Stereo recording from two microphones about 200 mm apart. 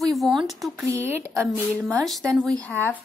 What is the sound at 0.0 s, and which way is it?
A woman's voice, centre (ahead or behind).